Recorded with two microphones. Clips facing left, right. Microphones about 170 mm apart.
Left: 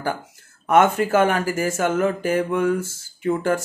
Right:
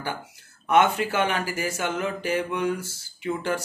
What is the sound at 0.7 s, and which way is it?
Speech, 45° left (ahead or behind).